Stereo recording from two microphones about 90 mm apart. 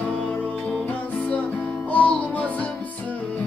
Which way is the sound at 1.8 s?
15° left (ahead or behind).